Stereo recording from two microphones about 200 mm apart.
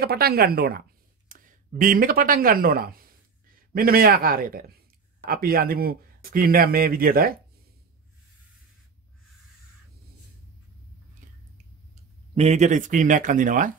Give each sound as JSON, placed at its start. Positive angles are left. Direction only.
{"t": 0.0, "sound": "speech", "side_deg": -50}
{"t": 11.2, "sound": "finger snapping", "side_deg": -40}
{"t": 12.4, "sound": "speech", "side_deg": -35}